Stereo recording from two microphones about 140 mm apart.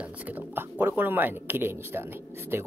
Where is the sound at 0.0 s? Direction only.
10° right (ahead or behind).